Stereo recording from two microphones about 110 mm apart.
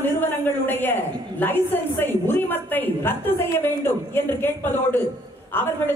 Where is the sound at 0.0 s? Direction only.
15° left (ahead or behind).